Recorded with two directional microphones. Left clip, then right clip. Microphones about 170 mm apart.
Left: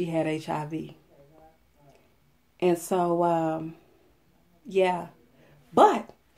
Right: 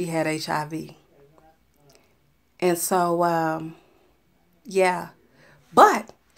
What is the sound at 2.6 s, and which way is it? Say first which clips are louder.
A woman's voice: right 3 dB; 5° right (ahead or behind).